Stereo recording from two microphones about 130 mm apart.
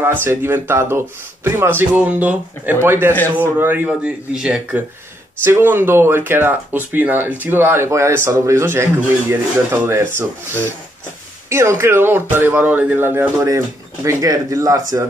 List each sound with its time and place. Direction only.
0.0 s speech: 15° right (ahead or behind)
5.4 s speech: 15° right (ahead or behind)
11.4 s speech: 20° right (ahead or behind)